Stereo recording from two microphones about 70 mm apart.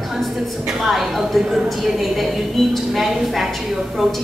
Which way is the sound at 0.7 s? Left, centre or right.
Centre.